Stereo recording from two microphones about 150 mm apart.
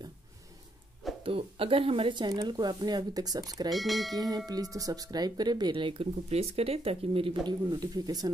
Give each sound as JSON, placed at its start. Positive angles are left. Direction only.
{"t": 1.2, "sound": "speech", "side_deg": -35}
{"t": 3.7, "sound": "speech", "side_deg": 0}
{"t": 4.7, "sound": "speech", "side_deg": -25}